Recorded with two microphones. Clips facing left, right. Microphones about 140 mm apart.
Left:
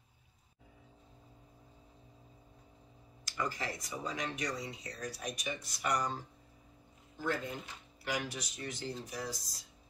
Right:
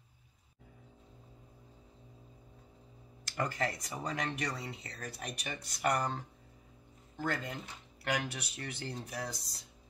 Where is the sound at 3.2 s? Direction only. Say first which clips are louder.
Right 3 dB; 60° right (ahead or behind).